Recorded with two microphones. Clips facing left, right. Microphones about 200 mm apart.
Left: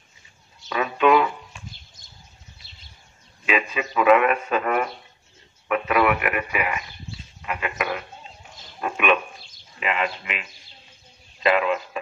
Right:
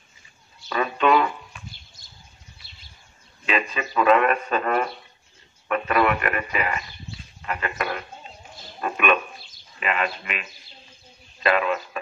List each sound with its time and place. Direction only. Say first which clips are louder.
0.7 s a sound: left 2 dB; 5° left (ahead or behind)
3.4 s a man's voice: left 1 dB; 5° left (ahead or behind)
11.4 s speech: left 1 dB; 20° left (ahead or behind)